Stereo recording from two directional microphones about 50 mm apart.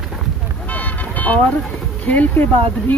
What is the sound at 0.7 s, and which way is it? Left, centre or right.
Vehicle, left.